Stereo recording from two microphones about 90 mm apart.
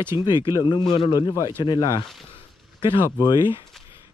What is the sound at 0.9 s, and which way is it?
Speech, 65° left (ahead or behind).